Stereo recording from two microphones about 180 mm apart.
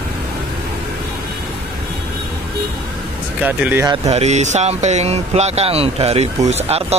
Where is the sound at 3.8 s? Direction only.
20° right (ahead or behind).